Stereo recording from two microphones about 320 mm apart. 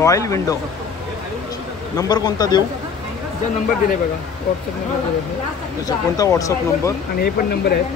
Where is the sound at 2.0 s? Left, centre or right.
Centre.